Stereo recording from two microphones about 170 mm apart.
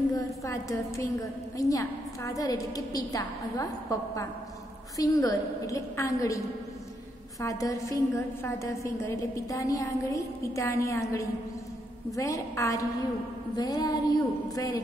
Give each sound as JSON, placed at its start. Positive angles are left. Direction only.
{"t": 0.1, "sound": "a woman's voice", "side_deg": 20}